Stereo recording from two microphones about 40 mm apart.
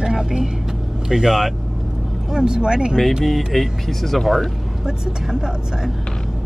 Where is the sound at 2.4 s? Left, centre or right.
Centre.